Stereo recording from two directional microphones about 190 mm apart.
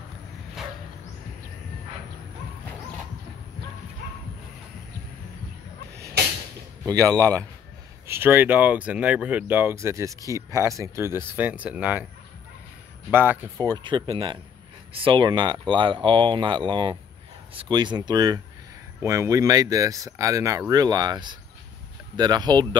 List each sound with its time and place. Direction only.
6.9 s speech: 15° right (ahead or behind)
13.1 s speech: 10° right (ahead or behind)